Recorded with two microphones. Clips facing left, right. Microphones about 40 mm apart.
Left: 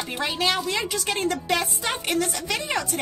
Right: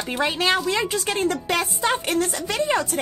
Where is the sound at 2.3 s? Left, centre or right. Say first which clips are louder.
Right 4 dB; right.